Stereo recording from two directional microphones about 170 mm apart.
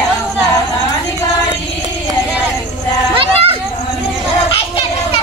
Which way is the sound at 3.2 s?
35° right (ahead or behind).